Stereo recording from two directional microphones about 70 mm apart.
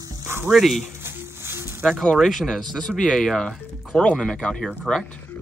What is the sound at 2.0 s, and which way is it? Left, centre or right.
Speech, centre.